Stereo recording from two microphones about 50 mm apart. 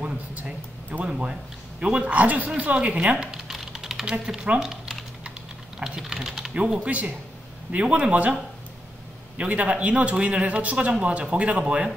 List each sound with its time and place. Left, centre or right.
0.0 s speech: right
3.4 s typing: centre
6.5 s speech: right
9.4 s speech: right